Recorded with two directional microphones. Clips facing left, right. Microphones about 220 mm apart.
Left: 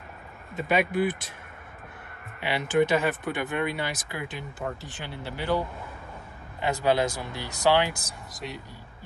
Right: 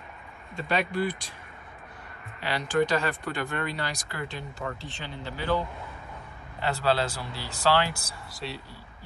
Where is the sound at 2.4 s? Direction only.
5° left (ahead or behind).